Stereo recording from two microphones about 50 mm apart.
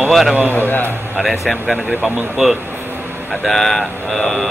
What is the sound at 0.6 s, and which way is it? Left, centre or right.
Speech, left.